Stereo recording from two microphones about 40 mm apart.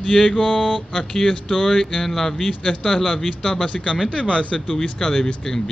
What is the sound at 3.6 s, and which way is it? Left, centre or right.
Speech, left.